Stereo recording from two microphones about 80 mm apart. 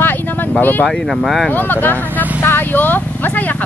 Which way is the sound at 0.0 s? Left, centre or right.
Left.